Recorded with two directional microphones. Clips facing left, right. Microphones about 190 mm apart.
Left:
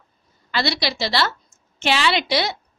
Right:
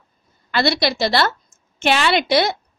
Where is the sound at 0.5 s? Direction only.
55° right (ahead or behind).